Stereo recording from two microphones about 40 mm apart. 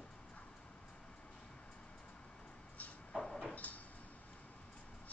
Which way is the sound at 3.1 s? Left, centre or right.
Centre.